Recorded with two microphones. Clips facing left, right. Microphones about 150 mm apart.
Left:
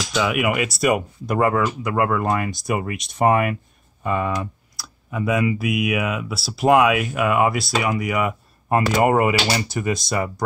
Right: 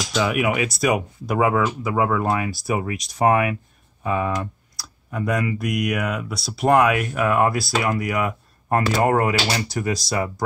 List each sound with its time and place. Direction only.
0.1 s speech: centre (ahead or behind)
4.0 s computer keyboard: centre (ahead or behind)
5.6 s speech: 5° left (ahead or behind)